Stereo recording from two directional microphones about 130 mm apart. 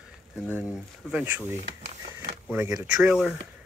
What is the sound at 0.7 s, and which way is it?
Speech, 10° right (ahead or behind).